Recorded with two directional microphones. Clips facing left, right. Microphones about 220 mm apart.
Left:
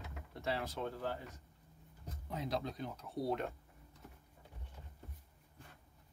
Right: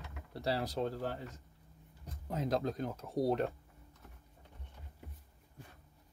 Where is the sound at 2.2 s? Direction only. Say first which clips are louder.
Right 6 dB; 45° right (ahead or behind).